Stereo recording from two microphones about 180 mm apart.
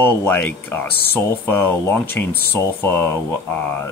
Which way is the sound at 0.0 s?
10° left (ahead or behind).